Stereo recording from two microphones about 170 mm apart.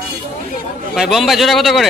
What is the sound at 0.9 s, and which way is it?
Speech, centre (ahead or behind).